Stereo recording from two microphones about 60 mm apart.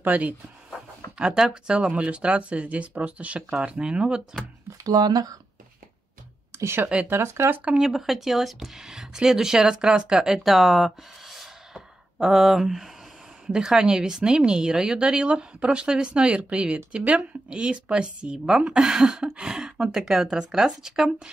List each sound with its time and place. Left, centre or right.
0.0 s speech: right
1.1 s a woman's voice: centre
4.8 s speech: right
7.1 s speech: right
7.7 s a woman's voice: centre